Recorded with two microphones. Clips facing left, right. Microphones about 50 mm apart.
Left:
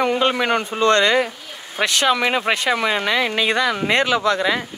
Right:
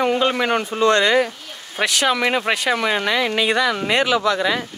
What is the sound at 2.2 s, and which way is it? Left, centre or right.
Speech, left.